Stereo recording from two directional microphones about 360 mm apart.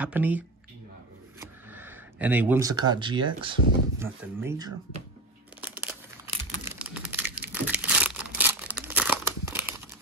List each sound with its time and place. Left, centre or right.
0.0 s speech: centre
1.4 s a sound: centre
2.9 s speech: centre
5.6 s crumpling: centre